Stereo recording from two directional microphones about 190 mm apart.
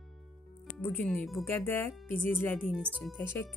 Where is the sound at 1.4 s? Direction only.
10° left (ahead or behind).